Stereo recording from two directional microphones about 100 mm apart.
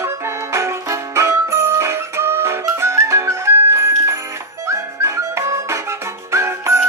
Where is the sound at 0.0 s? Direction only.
25° right (ahead or behind).